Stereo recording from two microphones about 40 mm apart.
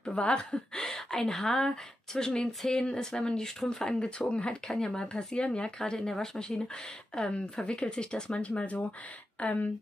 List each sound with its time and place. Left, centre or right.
0.1 s speech: left
0.7 s speech: centre
4.2 s speech: left